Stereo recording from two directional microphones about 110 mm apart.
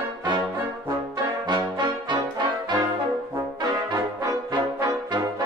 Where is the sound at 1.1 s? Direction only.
40° right (ahead or behind).